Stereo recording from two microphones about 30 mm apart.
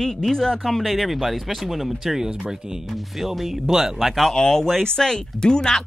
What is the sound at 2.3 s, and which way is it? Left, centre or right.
Speech, right.